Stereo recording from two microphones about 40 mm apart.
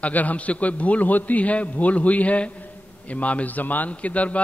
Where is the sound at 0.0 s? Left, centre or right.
Left.